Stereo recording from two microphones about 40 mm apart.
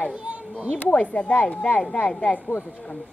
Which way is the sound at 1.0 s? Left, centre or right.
Left.